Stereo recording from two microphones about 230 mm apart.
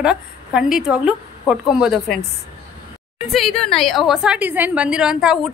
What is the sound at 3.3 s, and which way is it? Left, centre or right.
A woman's voice, centre.